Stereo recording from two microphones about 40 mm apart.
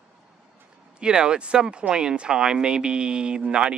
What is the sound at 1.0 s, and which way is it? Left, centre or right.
Speech, right.